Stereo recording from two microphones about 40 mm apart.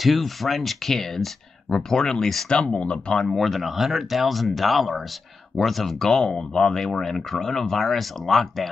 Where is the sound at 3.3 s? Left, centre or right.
Centre.